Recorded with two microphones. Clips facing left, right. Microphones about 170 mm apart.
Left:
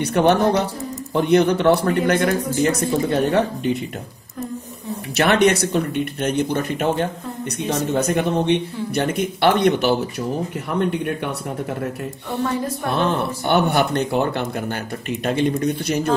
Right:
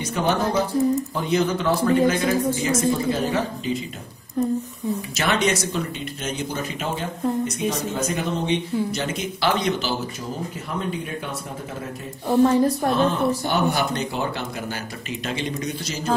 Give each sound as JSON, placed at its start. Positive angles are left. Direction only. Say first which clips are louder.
{"t": 0.0, "sound": "speech", "louder": "left 6 dB", "side_deg": 65}
{"t": 5.1, "sound": "speech", "louder": "left 8 dB", "side_deg": 60}
{"t": 12.3, "sound": "a woman's voice", "louder": "right 7 dB", "side_deg": -35}
{"t": 12.9, "sound": "speech", "louder": "right 1 dB", "side_deg": 65}